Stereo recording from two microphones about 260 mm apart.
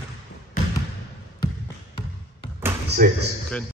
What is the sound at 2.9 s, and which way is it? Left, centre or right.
Speech, right.